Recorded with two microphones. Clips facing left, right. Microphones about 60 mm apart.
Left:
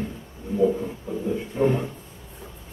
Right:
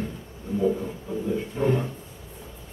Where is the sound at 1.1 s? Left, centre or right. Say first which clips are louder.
Even; centre.